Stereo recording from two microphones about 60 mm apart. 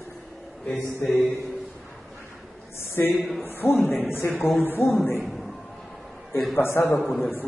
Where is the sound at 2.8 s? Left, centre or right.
Left.